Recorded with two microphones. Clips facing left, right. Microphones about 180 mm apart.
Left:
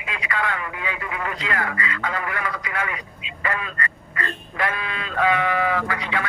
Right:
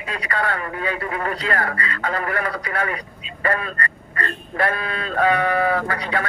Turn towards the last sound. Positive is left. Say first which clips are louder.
# right 2 dB
turn(degrees=-40)  # may be behind; listen again after turning